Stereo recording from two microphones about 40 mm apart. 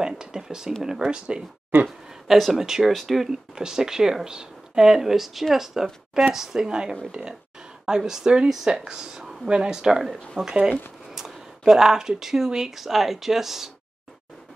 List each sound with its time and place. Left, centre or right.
0.0 s a sound: centre
1.1 s speech: right
2.2 s speech: centre
2.9 s speech: centre
3.3 s speech: centre
11.1 s a sound: centre
12.4 s speech: centre